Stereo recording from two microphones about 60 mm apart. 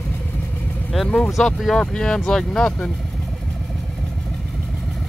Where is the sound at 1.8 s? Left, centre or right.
Centre.